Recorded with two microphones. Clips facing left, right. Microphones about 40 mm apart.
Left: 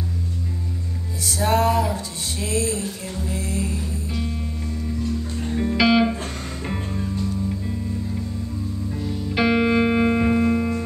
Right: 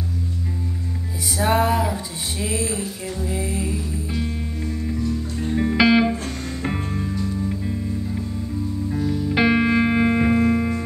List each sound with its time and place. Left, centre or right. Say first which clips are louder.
1.4 s music: even; centre
5.6 s music: right 1 dB; centre
8.9 s music: right 4 dB; centre